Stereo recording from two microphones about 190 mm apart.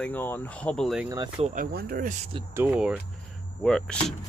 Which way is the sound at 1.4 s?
45° right (ahead or behind).